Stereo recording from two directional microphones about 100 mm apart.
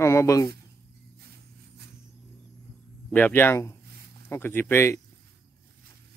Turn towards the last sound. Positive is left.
turn(degrees=25)  # may be behind; listen again after turning